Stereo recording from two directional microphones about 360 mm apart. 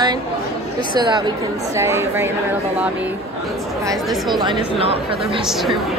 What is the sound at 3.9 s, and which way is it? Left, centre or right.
A woman's voice, centre.